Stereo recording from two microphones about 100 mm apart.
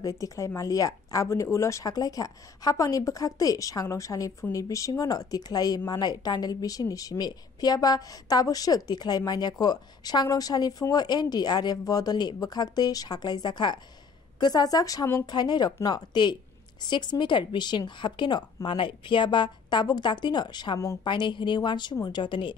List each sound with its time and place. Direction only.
0.0 s a woman's voice: 35° left (ahead or behind); by 22.6 s 55° left (ahead or behind)